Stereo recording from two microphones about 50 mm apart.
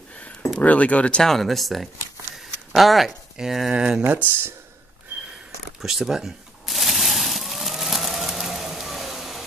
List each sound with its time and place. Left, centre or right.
0.6 s speech: left
1.2 s speech: centre
4.0 s speech: right
5.8 s speech: centre
6.7 s a sound: centre